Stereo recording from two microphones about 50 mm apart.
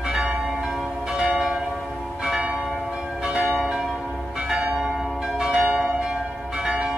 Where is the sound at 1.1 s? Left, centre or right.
Centre.